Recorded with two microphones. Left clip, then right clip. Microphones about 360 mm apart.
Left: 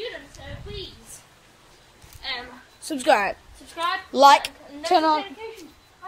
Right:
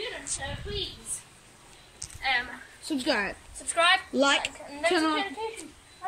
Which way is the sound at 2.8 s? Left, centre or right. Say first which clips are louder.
Left 8 dB; centre.